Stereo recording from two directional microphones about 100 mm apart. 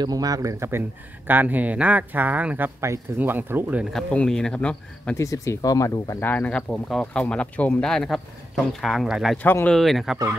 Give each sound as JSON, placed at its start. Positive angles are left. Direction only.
{"t": 0.0, "sound": "speech", "side_deg": -40}
{"t": 3.9, "sound": "speech", "side_deg": 10}
{"t": 5.1, "sound": "speech", "side_deg": 30}
{"t": 6.2, "sound": "speech", "side_deg": 15}
{"t": 9.4, "sound": "speech", "side_deg": 20}
{"t": 9.7, "sound": "speech", "side_deg": 0}